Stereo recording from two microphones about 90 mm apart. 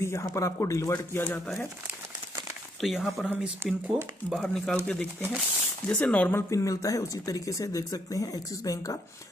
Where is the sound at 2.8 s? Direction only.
5° right (ahead or behind).